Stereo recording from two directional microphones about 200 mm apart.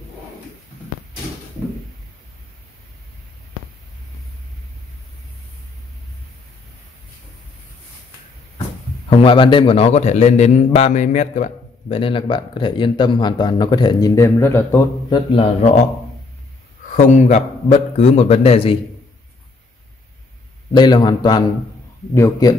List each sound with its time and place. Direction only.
9.2 s a man's voice: 25° left (ahead or behind)
11.9 s speech: 25° left (ahead or behind)
15.0 s a man's voice: 30° left (ahead or behind)
16.9 s a man's voice: 35° left (ahead or behind)
20.7 s a man's voice: 20° left (ahead or behind)